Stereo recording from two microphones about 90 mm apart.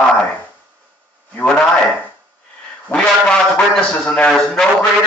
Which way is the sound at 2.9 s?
10° left (ahead or behind).